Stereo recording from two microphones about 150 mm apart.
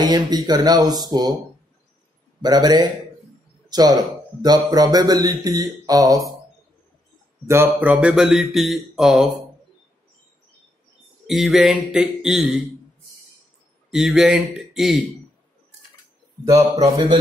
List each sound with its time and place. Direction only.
0.0 s speech: 30° right (ahead or behind)
2.4 s speech: 25° right (ahead or behind)
7.4 s speech: 15° right (ahead or behind)
11.2 s speech: centre (ahead or behind)
13.8 s speech: 5° right (ahead or behind)
16.8 s speech: 25° right (ahead or behind)